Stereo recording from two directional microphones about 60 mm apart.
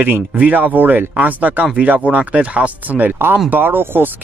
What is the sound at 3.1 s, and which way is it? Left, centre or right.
Speech, right.